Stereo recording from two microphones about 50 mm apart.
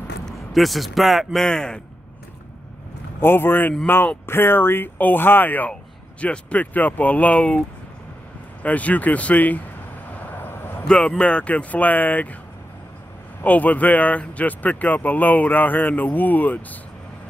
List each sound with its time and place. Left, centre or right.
0.2 s speech: centre
3.2 s speech: left
3.8 s speech: left
4.3 s speech: left
6.2 s speech: left
8.6 s speech: left
10.1 s vehicle: left
10.9 s speech: centre
13.4 s speech: left